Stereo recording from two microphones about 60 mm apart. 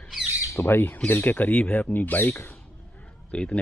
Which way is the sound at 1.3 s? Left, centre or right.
Left.